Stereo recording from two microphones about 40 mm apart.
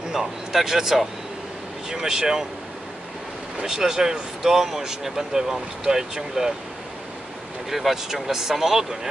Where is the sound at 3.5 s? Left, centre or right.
Centre.